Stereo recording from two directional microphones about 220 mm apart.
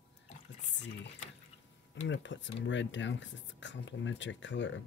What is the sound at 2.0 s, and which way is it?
Speech, 55° left (ahead or behind).